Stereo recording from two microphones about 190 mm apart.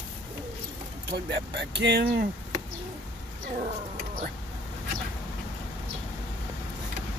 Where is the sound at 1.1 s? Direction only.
60° right (ahead or behind).